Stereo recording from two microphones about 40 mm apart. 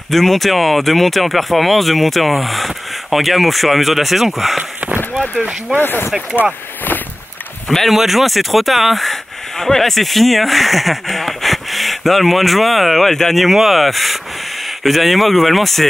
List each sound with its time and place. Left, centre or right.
0.1 s speech: centre
5.8 s speech: left
7.9 s speech: centre
13.4 s speech: centre